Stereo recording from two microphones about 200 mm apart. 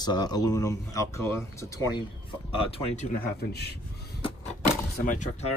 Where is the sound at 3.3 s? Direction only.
55° left (ahead or behind).